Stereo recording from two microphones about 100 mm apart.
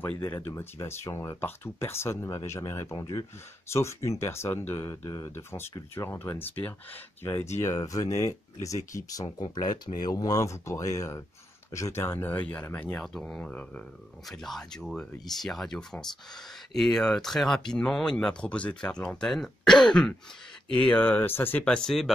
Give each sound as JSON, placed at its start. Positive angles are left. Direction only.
{"t": 0.2, "sound": "speech", "side_deg": 25}
{"t": 13.0, "sound": "speech", "side_deg": 5}
{"t": 21.6, "sound": "speech", "side_deg": 5}